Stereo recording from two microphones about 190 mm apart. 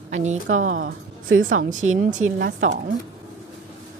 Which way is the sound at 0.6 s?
90° right.